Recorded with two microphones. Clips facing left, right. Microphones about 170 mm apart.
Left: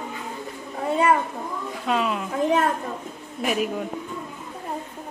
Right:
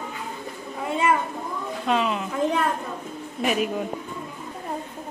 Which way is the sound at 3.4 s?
Centre (ahead or behind).